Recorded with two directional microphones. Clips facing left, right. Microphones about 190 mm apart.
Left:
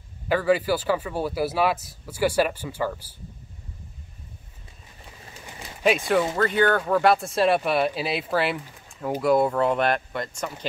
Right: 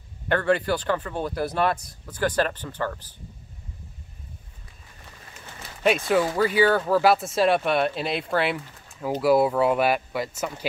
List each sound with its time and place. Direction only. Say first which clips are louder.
0.3 s speech: left 1 dB; 5° left (ahead or behind)
5.4 s bird: left 1 dB; 15° left (ahead or behind)
5.9 s speech: even; centre (ahead or behind)